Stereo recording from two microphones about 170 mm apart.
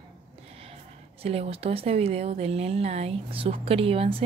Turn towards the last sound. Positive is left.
turn(degrees=-35)  # may be behind; listen again after turning